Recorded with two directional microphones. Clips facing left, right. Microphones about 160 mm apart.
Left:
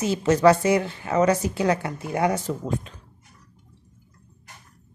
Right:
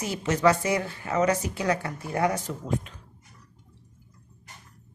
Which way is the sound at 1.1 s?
35° left (ahead or behind).